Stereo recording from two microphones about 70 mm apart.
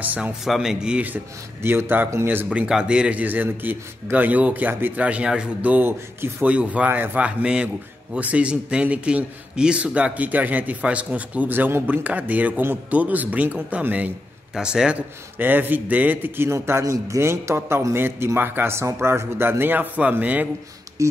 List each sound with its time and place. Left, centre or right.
0.0 s a man's voice: right
0.5 s speech: centre
1.0 s a man's voice: right
14.5 s speech: centre
15.3 s a man's voice: right
21.0 s speech: right